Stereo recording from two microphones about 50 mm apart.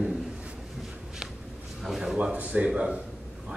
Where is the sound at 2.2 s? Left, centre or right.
Right.